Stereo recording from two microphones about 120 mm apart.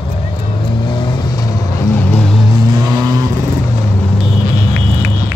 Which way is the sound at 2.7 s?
35° right (ahead or behind).